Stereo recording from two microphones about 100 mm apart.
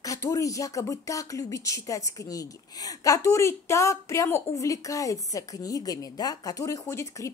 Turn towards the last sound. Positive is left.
turn(degrees=30)  # may be behind; listen again after turning